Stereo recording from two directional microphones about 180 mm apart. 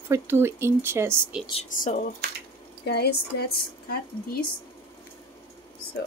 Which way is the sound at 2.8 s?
65° left (ahead or behind).